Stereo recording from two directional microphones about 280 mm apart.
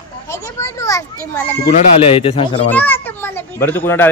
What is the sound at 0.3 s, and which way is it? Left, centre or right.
A child's voice, centre.